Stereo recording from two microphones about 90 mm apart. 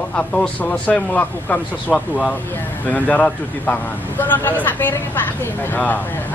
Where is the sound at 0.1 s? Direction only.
15° left (ahead or behind).